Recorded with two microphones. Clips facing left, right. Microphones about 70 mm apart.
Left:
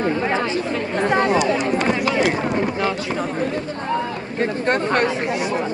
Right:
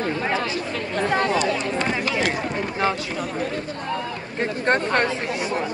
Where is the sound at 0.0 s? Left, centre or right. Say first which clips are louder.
Left 4 dB; left.